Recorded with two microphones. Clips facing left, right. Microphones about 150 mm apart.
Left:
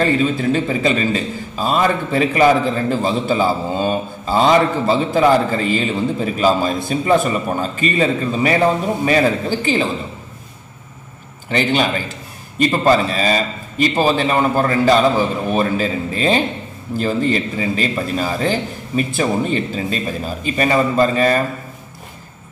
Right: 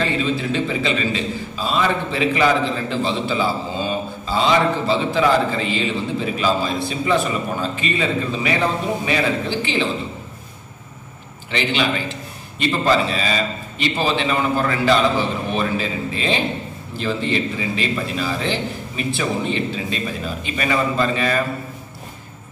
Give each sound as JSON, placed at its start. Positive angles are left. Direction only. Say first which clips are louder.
{"t": 0.0, "sound": "a man's voice", "louder": "left 5 dB", "side_deg": 45}
{"t": 11.5, "sound": "a man's voice", "louder": "left 4 dB", "side_deg": 40}